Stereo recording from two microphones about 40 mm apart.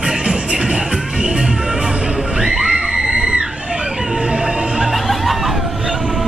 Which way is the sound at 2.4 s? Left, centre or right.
Centre.